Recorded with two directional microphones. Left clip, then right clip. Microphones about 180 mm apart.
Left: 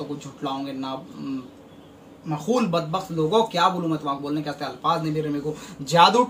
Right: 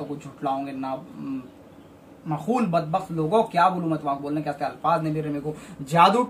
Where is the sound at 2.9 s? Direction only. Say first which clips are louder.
Left 1 dB; 15° right (ahead or behind).